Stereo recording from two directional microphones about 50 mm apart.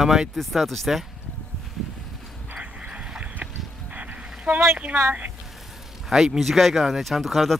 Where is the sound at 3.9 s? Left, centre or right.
Right.